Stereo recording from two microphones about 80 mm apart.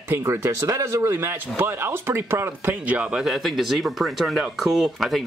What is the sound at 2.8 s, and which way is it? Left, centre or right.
Speech, centre.